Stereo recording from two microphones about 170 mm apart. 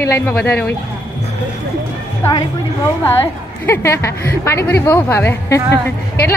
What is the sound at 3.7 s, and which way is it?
A woman's voice, 15° left (ahead or behind).